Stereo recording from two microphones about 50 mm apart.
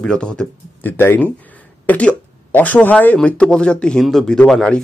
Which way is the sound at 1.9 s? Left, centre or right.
Left.